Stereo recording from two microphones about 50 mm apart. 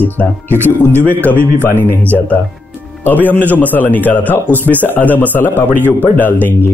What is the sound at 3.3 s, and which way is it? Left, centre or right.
A man's voice, left.